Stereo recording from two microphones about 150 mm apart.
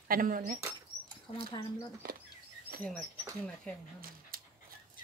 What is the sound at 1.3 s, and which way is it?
Speech, 35° left (ahead or behind).